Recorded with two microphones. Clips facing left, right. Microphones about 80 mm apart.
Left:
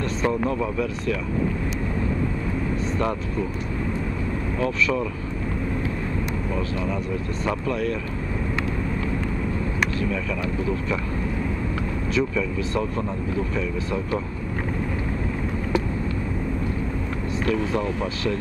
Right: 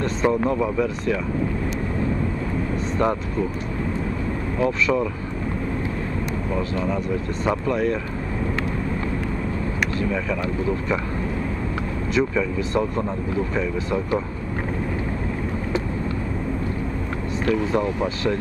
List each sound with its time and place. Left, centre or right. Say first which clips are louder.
0.2 s speech: right 3 dB; right
4.6 s speech: right 3 dB; right
6.5 s speech: right 4 dB; centre
12.2 s speech: right 3 dB; right